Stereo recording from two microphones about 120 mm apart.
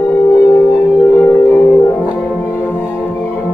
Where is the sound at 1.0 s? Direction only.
20° left (ahead or behind).